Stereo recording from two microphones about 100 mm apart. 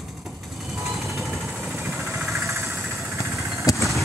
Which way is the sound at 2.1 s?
5° right (ahead or behind).